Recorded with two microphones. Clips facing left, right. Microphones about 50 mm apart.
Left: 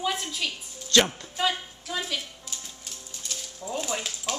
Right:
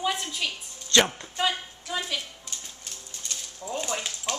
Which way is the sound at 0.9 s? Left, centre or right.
Centre.